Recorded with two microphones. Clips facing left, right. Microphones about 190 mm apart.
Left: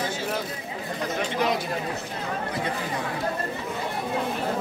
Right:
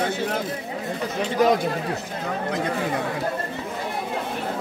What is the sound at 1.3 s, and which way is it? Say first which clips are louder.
Speech: right 8 dB; 45° right (ahead or behind).